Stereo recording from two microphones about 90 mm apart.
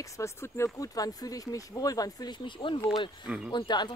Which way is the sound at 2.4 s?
65° left (ahead or behind).